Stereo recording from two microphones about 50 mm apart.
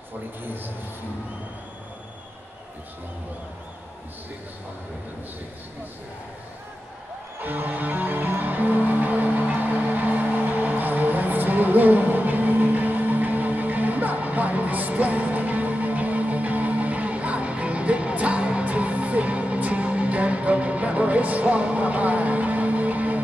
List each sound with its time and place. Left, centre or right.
7.3 s music: right